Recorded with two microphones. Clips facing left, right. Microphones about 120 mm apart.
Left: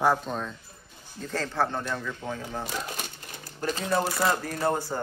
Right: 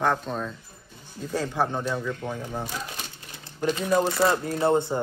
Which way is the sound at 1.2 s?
10° right (ahead or behind).